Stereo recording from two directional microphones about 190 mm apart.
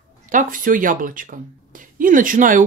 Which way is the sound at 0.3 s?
45° right (ahead or behind).